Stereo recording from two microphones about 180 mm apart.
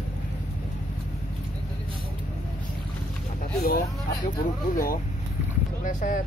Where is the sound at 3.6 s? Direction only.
55° left (ahead or behind).